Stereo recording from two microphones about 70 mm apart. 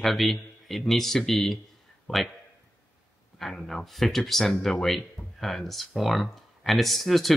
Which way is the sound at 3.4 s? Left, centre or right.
Centre.